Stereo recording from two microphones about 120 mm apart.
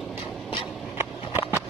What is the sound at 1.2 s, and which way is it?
Clip-clop, 50° left (ahead or behind).